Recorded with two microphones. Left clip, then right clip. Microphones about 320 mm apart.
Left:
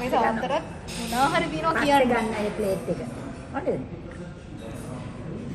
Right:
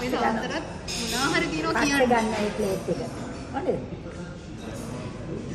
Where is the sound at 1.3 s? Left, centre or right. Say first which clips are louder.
Left 1 dB; centre.